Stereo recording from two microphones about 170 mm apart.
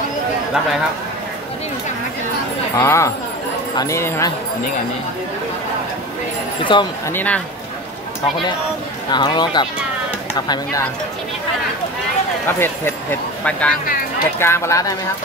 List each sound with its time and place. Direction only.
2.8 s speech: 15° left (ahead or behind)
6.6 s speech: 30° left (ahead or behind)
7.1 s speech: 10° left (ahead or behind)
9.1 s speech: 25° left (ahead or behind)
12.4 s speech: 10° left (ahead or behind)